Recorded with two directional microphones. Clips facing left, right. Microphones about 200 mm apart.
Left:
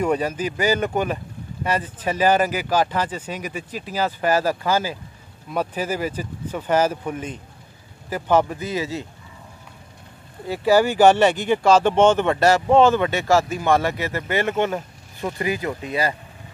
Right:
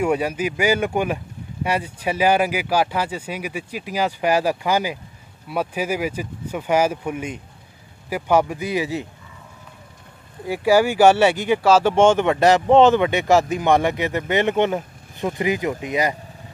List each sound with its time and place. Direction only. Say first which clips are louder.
0.0 s speech: right 1 dB; 10° right (ahead or behind)
10.4 s speech: right 1 dB; 10° right (ahead or behind)